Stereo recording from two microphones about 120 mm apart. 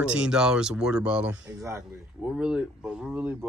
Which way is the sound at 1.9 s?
10° right (ahead or behind).